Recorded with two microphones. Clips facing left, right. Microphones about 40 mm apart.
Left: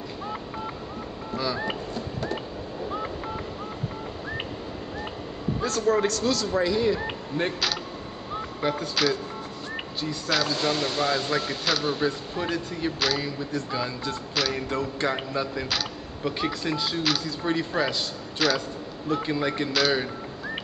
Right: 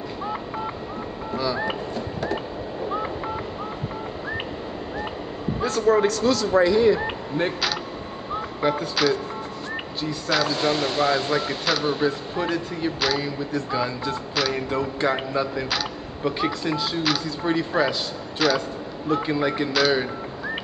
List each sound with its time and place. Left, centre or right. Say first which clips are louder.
1.3 s speech: right 3 dB; centre
5.6 s speech: right 4 dB; centre